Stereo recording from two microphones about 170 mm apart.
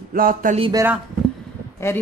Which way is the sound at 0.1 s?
55° right (ahead or behind).